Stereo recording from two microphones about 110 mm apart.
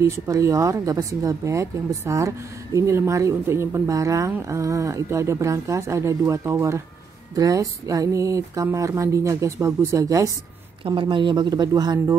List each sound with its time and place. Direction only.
0.0 s a woman's voice: 30° right (ahead or behind)
10.8 s speech: 50° right (ahead or behind)